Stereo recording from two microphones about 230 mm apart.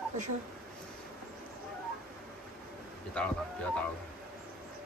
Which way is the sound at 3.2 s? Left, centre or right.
Centre.